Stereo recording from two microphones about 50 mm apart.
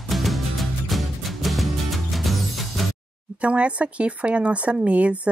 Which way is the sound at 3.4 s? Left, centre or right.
Right.